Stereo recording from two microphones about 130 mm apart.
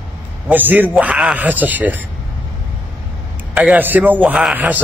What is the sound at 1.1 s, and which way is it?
Speech, centre (ahead or behind).